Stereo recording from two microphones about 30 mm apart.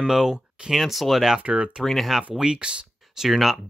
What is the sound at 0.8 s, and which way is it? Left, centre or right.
Speech, centre.